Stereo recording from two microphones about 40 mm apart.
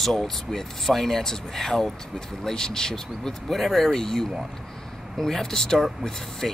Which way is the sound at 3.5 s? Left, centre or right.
Centre.